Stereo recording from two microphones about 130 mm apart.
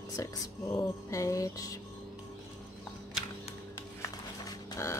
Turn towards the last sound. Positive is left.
turn(degrees=25)  # may be behind; listen again after turning